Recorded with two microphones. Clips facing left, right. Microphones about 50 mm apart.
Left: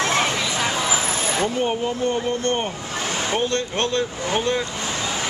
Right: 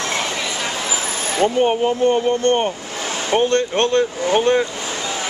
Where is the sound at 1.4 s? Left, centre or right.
Right.